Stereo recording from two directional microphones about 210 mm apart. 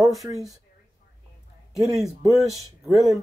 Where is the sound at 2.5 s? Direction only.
15° right (ahead or behind).